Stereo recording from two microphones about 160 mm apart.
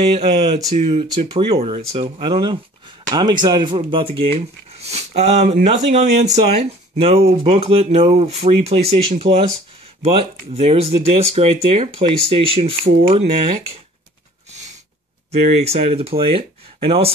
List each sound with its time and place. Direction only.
0.0 s speech: 40° right (ahead or behind)
14.5 s a sound: 45° right (ahead or behind)
15.3 s speech: 40° right (ahead or behind)